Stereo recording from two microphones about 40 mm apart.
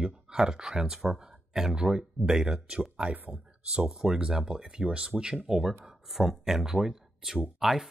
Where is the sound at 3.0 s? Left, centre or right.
Right.